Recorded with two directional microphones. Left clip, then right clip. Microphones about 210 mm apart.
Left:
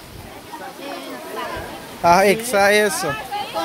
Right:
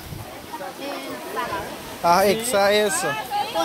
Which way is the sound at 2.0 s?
30° left (ahead or behind).